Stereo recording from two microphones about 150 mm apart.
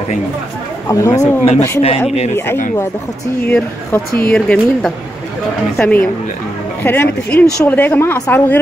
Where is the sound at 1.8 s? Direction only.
40° left (ahead or behind).